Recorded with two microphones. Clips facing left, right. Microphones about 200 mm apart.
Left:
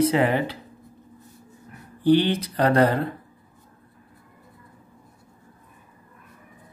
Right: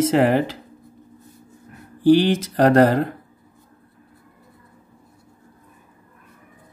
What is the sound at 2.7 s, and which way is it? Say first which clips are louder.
Speech: right 4 dB; 45° right (ahead or behind).